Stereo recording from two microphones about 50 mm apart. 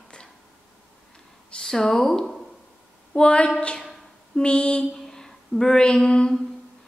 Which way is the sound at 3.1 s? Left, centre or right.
Left.